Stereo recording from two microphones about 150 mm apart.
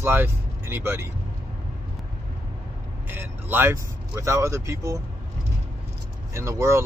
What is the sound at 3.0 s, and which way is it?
Speech, 15° right (ahead or behind).